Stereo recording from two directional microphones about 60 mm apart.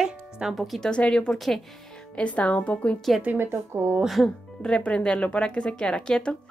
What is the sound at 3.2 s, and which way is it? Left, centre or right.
Speech, right.